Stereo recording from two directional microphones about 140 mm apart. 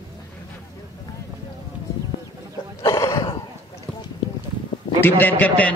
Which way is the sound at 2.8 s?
25° left (ahead or behind).